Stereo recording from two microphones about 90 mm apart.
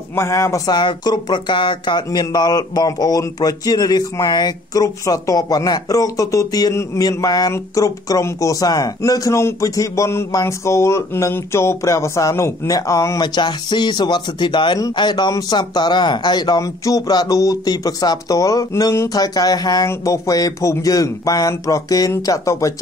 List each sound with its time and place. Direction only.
0.1 s speech: 35° left (ahead or behind)
0.7 s speech: 55° left (ahead or behind); by 13.2 s 35° left (ahead or behind)
13.2 s speech: 55° left (ahead or behind); by 22.7 s 35° left (ahead or behind)